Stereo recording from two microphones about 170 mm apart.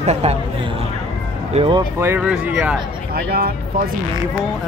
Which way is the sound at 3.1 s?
65° right (ahead or behind).